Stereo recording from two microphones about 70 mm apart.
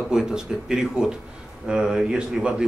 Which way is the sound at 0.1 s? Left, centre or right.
Centre.